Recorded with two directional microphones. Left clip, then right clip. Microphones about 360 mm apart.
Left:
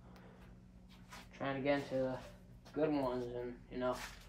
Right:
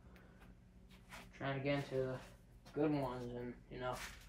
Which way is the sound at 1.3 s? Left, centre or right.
Centre.